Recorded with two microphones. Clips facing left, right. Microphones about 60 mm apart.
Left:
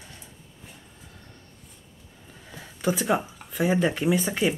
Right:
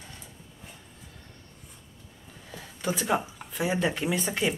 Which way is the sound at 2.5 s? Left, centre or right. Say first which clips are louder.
Left 4 dB; centre.